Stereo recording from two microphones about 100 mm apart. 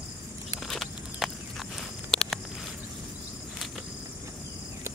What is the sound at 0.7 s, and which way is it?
Walk, centre (ahead or behind).